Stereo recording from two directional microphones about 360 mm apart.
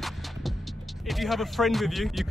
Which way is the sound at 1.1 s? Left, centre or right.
Centre.